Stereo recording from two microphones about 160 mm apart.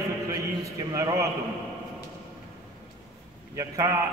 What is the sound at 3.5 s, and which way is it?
Speech, 20° right (ahead or behind).